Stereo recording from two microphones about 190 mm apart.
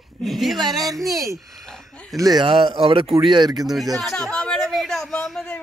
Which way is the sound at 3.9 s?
Centre (ahead or behind).